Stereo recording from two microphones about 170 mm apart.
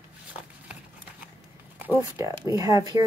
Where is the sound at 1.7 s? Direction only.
15° right (ahead or behind).